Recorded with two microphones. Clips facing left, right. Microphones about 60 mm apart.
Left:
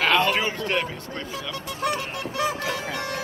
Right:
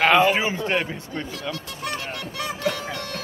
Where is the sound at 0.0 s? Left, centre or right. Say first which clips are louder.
Right 3 dB; centre.